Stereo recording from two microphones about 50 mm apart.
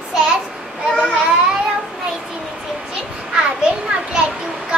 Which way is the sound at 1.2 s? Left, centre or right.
Centre.